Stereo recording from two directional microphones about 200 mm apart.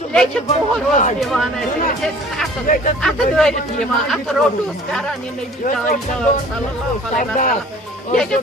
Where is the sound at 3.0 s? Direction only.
Centre (ahead or behind).